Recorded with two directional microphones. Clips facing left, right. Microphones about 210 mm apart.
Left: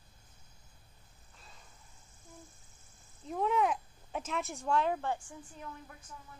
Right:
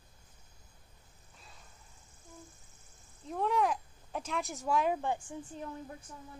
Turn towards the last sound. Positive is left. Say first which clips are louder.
# right 5 dB
turn(degrees=-30)  # may be behind; listen again after turning